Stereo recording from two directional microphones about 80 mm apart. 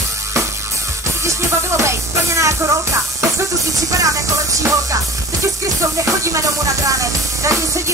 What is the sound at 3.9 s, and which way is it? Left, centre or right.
Music, right.